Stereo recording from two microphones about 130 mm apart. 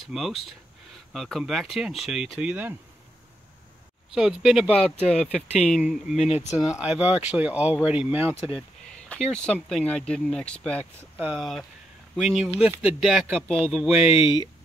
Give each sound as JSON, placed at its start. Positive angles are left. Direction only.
{"t": 0.0, "sound": "speech", "side_deg": 0}
{"t": 4.1, "sound": "speech", "side_deg": -5}
{"t": 4.9, "sound": "speech", "side_deg": 60}
{"t": 5.8, "sound": "speech", "side_deg": -5}
{"t": 6.1, "sound": "speech", "side_deg": 60}
{"t": 6.6, "sound": "speech", "side_deg": -5}
{"t": 9.1, "sound": "speech", "side_deg": 5}
{"t": 11.0, "sound": "speech", "side_deg": -10}
{"t": 11.3, "sound": "speech", "side_deg": 0}
{"t": 13.7, "sound": "speech", "side_deg": -10}
{"t": 14.1, "sound": "speech", "side_deg": 40}